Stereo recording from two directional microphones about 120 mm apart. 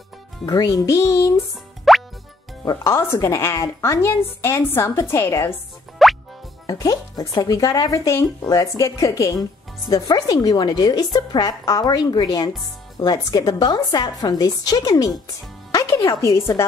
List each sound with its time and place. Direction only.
0.5 s a woman's voice: 30° left (ahead or behind)
1.9 s music: centre (ahead or behind)
2.6 s a woman's voice: 30° left (ahead or behind)
6.0 s music: centre (ahead or behind)
6.7 s a woman's voice: 30° left (ahead or behind)